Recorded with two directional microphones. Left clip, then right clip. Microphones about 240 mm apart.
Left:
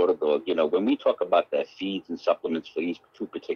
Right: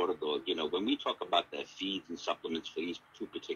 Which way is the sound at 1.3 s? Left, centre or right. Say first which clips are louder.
Left 9 dB; centre.